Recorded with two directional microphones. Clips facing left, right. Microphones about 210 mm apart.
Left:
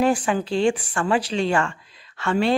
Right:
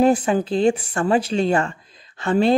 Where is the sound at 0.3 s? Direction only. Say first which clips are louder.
Right 3 dB; 35° right (ahead or behind).